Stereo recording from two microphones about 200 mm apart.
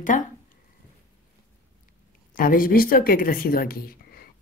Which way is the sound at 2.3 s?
45° left (ahead or behind).